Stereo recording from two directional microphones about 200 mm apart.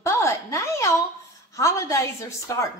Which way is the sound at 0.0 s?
15° left (ahead or behind).